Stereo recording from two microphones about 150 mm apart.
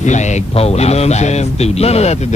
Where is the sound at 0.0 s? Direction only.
50° left (ahead or behind).